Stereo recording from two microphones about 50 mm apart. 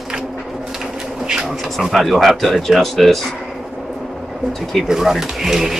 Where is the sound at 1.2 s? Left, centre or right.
Centre.